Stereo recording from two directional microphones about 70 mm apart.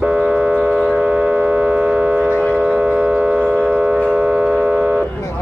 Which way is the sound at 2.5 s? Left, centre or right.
Centre.